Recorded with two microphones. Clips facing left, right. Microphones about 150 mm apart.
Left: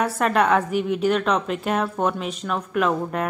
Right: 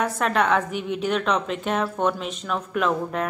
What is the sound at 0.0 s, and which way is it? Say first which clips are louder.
A woman's voice: left 2 dB; 5° left (ahead or behind).